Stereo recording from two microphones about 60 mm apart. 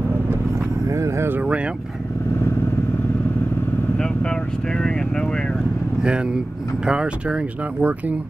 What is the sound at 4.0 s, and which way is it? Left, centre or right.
Vehicle, centre.